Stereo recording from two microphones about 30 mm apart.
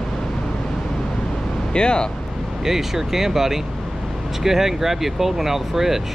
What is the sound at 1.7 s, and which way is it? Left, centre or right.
Speech, left.